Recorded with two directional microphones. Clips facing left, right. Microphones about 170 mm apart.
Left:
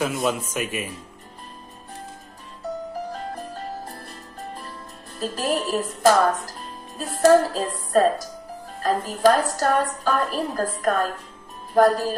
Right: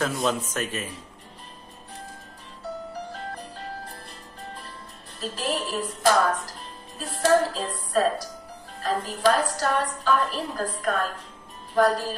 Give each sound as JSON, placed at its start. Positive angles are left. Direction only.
{"t": 0.0, "sound": "speech", "side_deg": 5}
{"t": 5.2, "sound": "a woman's voice", "side_deg": 45}